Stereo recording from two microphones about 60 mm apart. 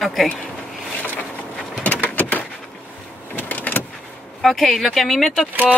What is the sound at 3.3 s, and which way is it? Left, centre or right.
Vehicle, left.